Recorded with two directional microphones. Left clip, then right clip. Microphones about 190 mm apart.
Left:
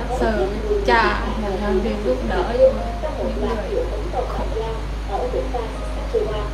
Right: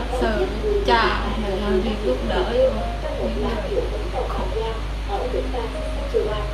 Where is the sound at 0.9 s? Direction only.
25° left (ahead or behind).